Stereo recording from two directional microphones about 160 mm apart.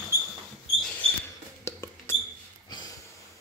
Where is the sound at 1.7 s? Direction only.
15° left (ahead or behind).